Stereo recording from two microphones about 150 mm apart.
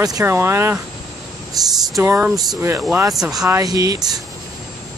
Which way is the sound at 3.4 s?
25° right (ahead or behind).